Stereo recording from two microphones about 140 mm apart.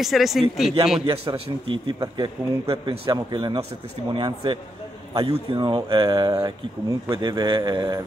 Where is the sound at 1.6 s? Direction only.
35° right (ahead or behind).